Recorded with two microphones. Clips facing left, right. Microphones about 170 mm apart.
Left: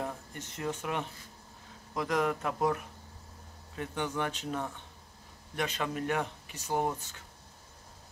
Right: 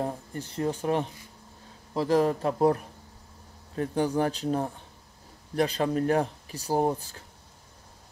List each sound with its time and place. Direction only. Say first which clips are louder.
0.0 s speech: right 6 dB; 35° right (ahead or behind)